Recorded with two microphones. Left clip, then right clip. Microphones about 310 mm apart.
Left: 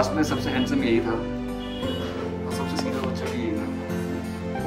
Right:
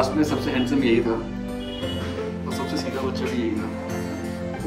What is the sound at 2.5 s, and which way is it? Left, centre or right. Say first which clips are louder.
Music: even; centre.